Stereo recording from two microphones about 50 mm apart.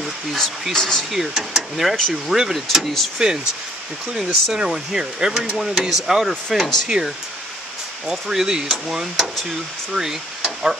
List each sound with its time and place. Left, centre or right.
0.0 s a sound: centre
1.1 s speech: centre
3.2 s speech: centre
7.0 s speech: centre